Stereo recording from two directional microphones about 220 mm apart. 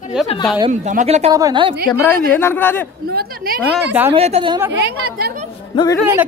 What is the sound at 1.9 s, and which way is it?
Speech, 15° left (ahead or behind).